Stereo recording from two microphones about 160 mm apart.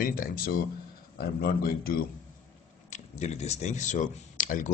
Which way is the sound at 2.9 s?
45° left (ahead or behind).